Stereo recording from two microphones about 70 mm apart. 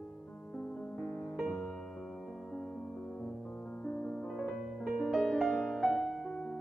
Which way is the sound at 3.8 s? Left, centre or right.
Centre.